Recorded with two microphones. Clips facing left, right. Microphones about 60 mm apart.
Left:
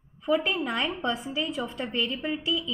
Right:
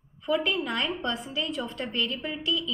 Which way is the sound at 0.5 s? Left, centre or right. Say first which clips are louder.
Even; centre.